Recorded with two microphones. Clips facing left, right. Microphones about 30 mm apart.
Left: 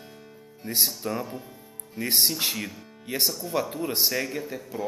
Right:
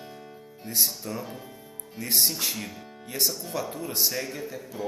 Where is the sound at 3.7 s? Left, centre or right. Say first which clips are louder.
Left 2 dB; left.